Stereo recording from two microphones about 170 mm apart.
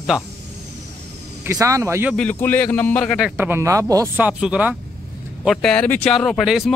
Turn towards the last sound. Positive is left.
turn(degrees=0)  # may be behind; listen again after turning